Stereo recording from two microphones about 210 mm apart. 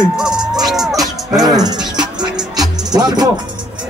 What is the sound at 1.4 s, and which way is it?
Music, 20° right (ahead or behind).